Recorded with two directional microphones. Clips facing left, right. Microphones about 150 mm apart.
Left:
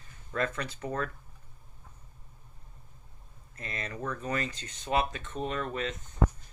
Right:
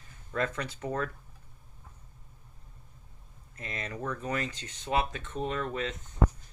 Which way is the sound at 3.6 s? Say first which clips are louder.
Even; 15° right (ahead or behind).